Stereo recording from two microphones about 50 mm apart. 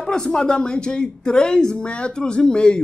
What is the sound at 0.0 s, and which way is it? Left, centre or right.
Speech, centre.